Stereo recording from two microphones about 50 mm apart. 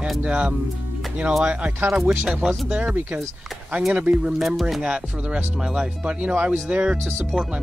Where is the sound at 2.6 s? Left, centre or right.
Right.